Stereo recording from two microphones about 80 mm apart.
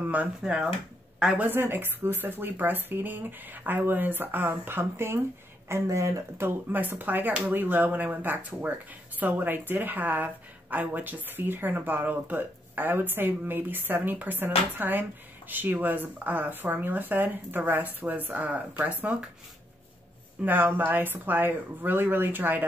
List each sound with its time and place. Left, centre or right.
0.4 s speech: centre
1.4 s a woman's voice: right
5.7 s speech: right
6.4 s a woman's voice: right
20.4 s a woman's voice: right